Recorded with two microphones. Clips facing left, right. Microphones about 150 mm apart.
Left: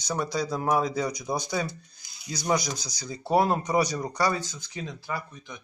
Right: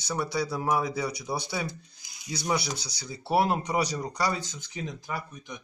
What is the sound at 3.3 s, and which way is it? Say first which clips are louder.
Speech: left 2 dB; 10° right (ahead or behind).